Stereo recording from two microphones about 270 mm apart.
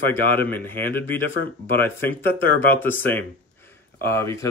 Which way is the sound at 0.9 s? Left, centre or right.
Left.